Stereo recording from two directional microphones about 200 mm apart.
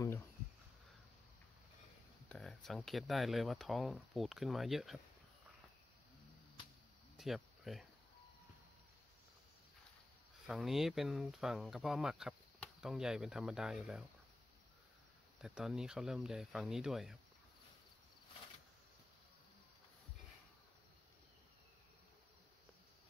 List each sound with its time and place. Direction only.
2.2 s speech: 5° left (ahead or behind)
7.2 s cricket: centre (ahead or behind)
10.4 s speech: centre (ahead or behind)
15.4 s speech: 5° right (ahead or behind)